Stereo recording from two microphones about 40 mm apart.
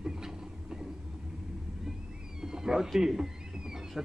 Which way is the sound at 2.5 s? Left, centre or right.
Centre.